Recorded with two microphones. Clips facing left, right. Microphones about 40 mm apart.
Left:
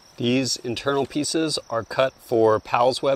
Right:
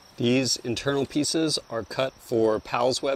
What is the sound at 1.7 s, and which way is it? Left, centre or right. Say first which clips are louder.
Speech: left 6 dB; centre.